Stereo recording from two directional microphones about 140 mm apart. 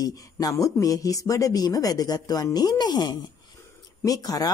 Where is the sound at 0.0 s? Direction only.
25° left (ahead or behind).